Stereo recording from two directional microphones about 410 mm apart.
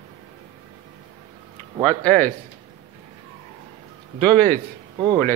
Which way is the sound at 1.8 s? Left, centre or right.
Centre.